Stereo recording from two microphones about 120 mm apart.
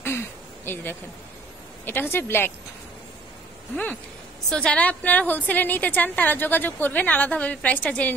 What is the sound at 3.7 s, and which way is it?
A woman's voice, 15° left (ahead or behind).